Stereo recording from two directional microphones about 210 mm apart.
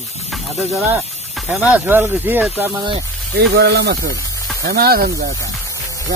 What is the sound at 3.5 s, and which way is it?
Speech, 50° right (ahead or behind).